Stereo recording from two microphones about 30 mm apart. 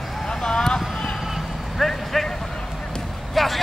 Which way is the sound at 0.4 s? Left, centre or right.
Centre.